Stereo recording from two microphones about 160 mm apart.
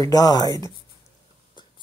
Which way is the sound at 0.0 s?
25° left (ahead or behind).